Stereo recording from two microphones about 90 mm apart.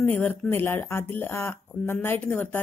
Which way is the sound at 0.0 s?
20° left (ahead or behind).